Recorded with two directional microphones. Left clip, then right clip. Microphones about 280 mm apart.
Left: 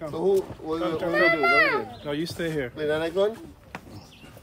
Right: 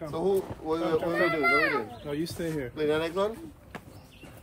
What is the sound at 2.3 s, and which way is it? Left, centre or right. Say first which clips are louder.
Speech: left 4 dB; left.